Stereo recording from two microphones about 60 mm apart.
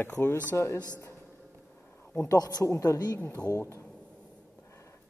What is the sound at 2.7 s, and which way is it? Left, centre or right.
Speech, left.